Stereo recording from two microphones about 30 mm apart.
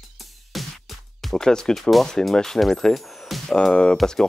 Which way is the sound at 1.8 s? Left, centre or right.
Centre.